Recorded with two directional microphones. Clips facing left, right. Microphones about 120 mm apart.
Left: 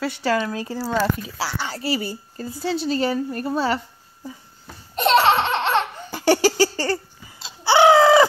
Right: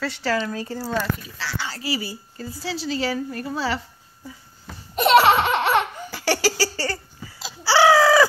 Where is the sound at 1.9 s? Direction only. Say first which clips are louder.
Left 3 dB; 50° left (ahead or behind).